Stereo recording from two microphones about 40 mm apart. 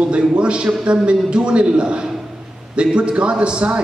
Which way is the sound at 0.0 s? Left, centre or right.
Right.